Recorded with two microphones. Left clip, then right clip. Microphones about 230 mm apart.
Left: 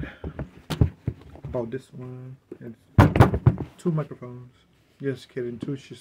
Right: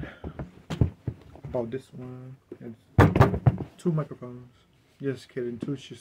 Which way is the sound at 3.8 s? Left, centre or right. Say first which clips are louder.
Left 1 dB; centre.